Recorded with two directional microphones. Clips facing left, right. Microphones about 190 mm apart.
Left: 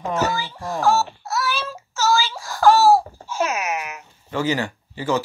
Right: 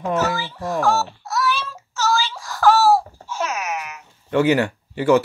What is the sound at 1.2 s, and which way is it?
Baby cry, 5° left (ahead or behind).